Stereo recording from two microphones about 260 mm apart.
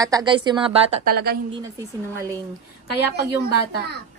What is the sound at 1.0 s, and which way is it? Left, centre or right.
Speech, right.